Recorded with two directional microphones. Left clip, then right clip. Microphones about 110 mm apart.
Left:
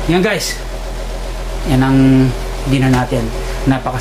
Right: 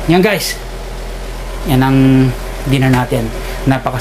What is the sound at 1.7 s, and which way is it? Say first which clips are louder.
Speech: right 1 dB; 35° right (ahead or behind).